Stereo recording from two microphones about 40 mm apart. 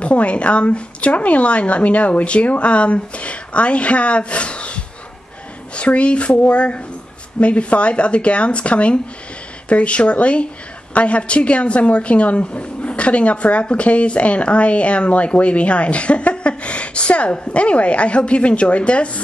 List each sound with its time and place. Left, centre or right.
0.0 s a woman's voice: left